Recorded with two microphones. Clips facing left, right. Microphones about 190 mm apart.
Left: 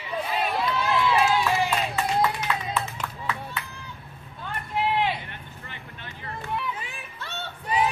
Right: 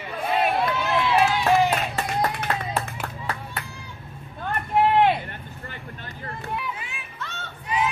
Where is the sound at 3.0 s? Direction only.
50° right (ahead or behind).